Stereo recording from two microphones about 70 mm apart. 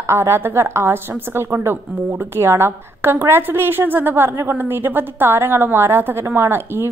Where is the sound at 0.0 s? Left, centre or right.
Right.